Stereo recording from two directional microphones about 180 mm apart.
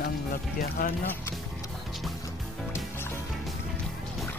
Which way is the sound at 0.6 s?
55° left (ahead or behind).